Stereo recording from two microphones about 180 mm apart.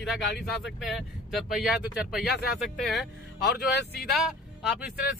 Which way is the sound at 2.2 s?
65° left (ahead or behind).